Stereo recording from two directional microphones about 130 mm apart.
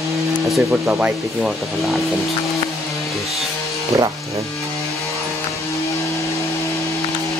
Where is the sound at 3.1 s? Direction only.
Centre (ahead or behind).